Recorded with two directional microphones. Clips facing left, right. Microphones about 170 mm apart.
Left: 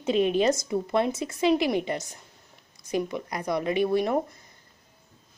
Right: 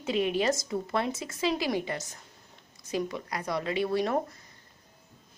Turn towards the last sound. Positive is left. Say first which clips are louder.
# left 4 dB
turn(degrees=15)  # may be behind; listen again after turning